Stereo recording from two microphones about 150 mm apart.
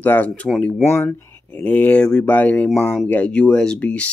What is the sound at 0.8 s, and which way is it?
Speech, 15° left (ahead or behind).